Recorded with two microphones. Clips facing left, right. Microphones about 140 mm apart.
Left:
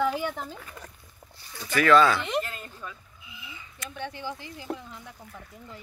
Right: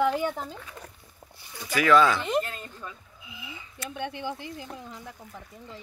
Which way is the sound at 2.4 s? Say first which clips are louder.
Right 1 dB; 25° right (ahead or behind).